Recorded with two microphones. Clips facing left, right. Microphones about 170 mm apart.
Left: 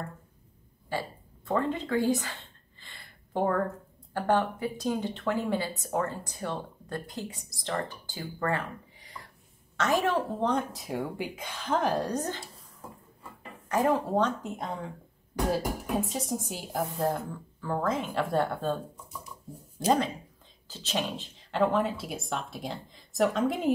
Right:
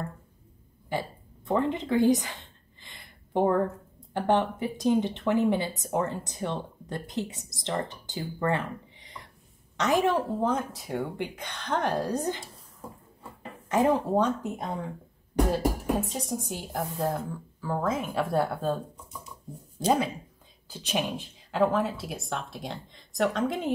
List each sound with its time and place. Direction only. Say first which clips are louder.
0.8 s a sound: right 2 dB; 20° right (ahead or behind)
4.1 s speech: right 2 dB; 20° right (ahead or behind)
9.0 s a sound: even; 20° right (ahead or behind)
9.8 s a woman's voice: right 2 dB; 15° right (ahead or behind)
10.5 s speech: even; centre (ahead or behind)
12.2 s a woman's voice: right 3 dB; 15° right (ahead or behind)
13.7 s a woman's voice: right 2 dB; 20° right (ahead or behind)
15.4 s speech: right 1 dB; centre (ahead or behind)
20.6 s speech: right 2 dB; 10° right (ahead or behind)